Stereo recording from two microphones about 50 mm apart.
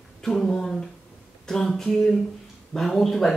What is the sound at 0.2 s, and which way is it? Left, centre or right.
Speech, centre.